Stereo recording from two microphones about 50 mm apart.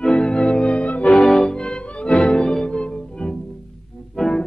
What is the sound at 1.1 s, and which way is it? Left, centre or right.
Music, centre.